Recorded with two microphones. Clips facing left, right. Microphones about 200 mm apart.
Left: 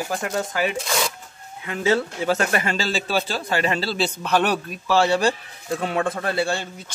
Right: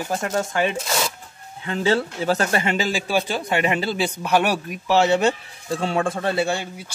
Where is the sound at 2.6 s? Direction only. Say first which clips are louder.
Right 2 dB; 15° right (ahead or behind).